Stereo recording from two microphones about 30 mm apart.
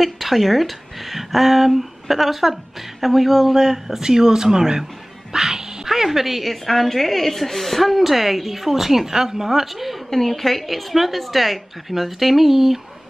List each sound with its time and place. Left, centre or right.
0.0 s speech: centre
5.3 s music: centre
6.4 s speech: centre
10.0 s speech: centre